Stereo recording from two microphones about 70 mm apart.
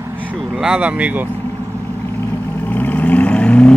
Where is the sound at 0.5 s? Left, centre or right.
Centre.